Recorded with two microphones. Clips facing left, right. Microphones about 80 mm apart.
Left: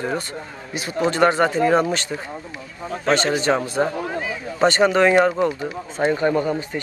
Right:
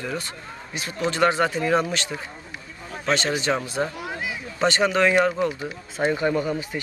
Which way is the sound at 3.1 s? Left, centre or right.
Left.